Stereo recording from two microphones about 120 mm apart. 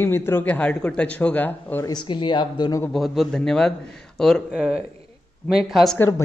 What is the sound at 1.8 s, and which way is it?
Speech, 40° left (ahead or behind).